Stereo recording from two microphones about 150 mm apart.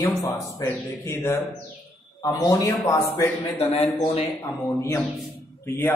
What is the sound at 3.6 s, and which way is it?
Speech, 40° left (ahead or behind).